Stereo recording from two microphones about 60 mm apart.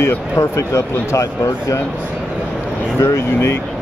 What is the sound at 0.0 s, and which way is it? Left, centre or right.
Speech, left.